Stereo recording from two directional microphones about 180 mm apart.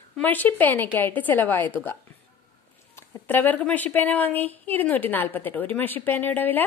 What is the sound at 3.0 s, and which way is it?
A woman's voice, 10° left (ahead or behind).